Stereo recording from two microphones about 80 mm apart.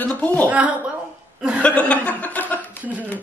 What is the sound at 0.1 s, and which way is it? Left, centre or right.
Speech, centre.